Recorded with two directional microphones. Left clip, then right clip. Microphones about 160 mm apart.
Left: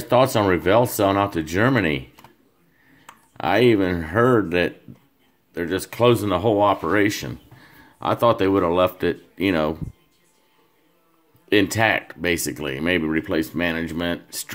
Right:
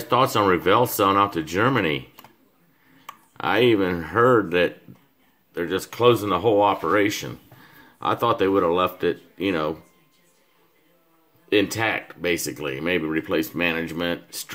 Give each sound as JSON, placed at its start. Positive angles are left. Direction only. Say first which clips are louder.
{"t": 0.1, "sound": "speech", "louder": "left 1 dB", "side_deg": 15}
{"t": 3.3, "sound": "speech", "louder": "left 2 dB", "side_deg": 20}
{"t": 11.4, "sound": "speech", "louder": "left 3 dB", "side_deg": 35}